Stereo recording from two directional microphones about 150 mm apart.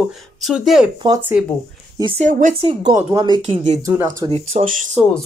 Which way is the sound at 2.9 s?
25° right (ahead or behind).